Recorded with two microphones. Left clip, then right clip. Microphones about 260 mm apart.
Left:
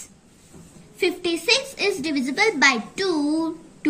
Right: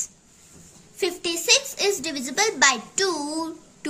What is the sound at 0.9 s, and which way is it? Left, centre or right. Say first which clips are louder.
A woman's voice: left 3 dB; right.